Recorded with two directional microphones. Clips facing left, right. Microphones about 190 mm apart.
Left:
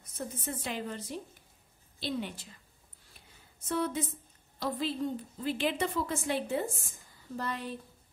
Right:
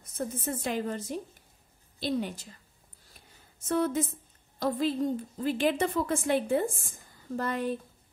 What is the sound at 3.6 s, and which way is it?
A woman's voice, 45° right (ahead or behind).